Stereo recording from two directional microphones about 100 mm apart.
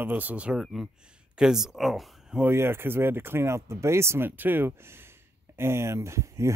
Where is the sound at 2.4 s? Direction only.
25° right (ahead or behind).